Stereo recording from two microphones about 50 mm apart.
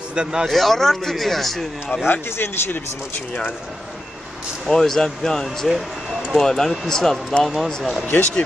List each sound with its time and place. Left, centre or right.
0.1 s a man's voice: centre
0.5 s speech: centre
2.0 s speech: left
4.6 s speech: centre
5.7 s speech: centre
6.4 s speech: centre